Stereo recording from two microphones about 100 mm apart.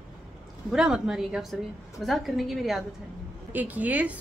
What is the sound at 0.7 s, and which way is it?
A woman's voice, 5° right (ahead or behind).